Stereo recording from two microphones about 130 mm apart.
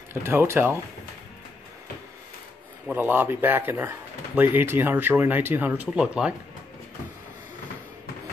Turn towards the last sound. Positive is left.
turn(degrees=-5)  # may be behind; listen again after turning